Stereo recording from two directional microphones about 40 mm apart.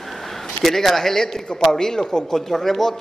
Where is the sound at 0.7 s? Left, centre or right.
Centre.